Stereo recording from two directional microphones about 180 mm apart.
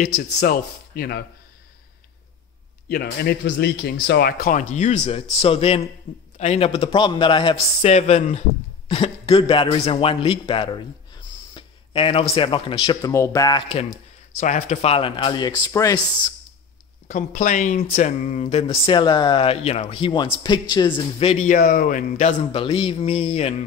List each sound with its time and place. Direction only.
0.4 s speech: 60° left (ahead or behind)
2.9 s speech: 60° left (ahead or behind)
4.7 s speech: 40° left (ahead or behind)
14.4 s speech: 40° left (ahead or behind); by 16.0 s 20° left (ahead or behind)
17.1 s speech: 45° left (ahead or behind)
21.5 s speech: 50° left (ahead or behind)
22.5 s speech: 30° left (ahead or behind)